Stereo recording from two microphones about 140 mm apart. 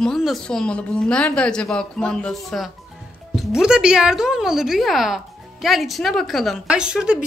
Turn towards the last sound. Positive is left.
turn(degrees=-5)  # may be behind; listen again after turning